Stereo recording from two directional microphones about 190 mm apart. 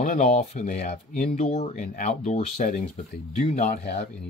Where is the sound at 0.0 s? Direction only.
40° left (ahead or behind).